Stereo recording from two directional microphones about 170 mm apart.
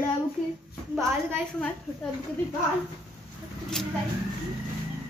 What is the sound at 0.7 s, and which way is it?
A woman's voice, centre (ahead or behind).